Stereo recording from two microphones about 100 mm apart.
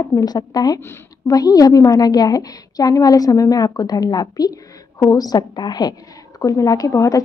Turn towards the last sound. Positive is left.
turn(degrees=35)  # may be behind; listen again after turning